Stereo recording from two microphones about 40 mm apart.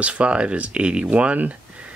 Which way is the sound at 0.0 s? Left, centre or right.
Right.